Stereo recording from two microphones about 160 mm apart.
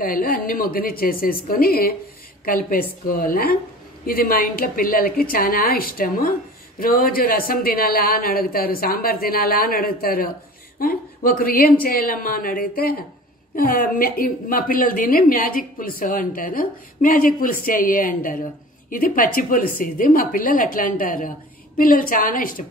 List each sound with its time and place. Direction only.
0.0 s a woman's voice: 65° left (ahead or behind)